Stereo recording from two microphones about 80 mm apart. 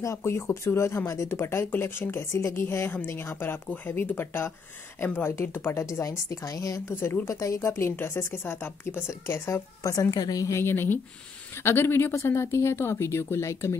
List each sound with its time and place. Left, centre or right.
0.0 s speech: left
6.9 s speech: left
10.1 s a woman's voice: left
10.6 s speech: left